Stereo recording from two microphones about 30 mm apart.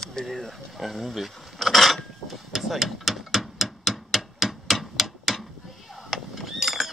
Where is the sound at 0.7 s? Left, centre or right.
Centre.